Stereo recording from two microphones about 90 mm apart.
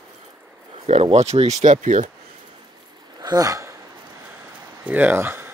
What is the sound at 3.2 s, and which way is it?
Speech, 45° right (ahead or behind).